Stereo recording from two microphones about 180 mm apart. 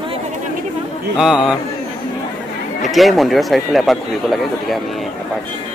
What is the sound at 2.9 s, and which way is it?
Speech, centre (ahead or behind).